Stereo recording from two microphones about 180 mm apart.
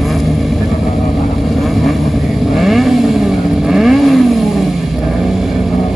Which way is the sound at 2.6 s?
Centre (ahead or behind).